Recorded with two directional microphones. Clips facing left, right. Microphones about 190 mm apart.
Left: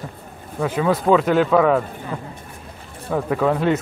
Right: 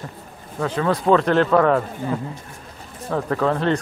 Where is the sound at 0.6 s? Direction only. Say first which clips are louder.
Left 1 dB; 10° left (ahead or behind).